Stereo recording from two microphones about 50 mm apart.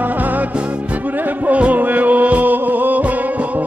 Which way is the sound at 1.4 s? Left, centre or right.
Right.